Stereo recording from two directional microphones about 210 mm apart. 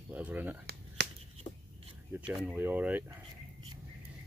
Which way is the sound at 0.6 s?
50° right (ahead or behind).